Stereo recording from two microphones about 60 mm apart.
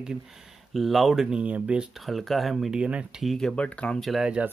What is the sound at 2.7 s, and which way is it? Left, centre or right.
Speech, centre.